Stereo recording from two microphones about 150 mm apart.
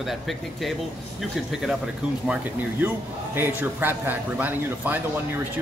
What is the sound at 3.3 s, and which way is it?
A man's voice, 15° right (ahead or behind).